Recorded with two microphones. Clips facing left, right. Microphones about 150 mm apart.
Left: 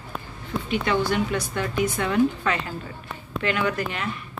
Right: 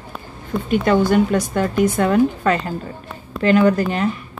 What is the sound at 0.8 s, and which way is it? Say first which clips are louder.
A woman's voice: right 9 dB; 45° right (ahead or behind).